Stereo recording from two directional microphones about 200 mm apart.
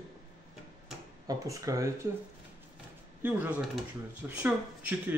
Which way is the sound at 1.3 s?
15° right (ahead or behind).